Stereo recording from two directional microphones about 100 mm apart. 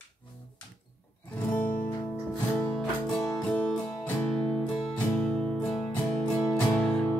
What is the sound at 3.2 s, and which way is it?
Music, 5° left (ahead or behind).